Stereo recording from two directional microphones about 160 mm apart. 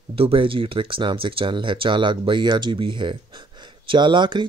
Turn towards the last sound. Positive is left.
turn(degrees=-30)  # may be behind; listen again after turning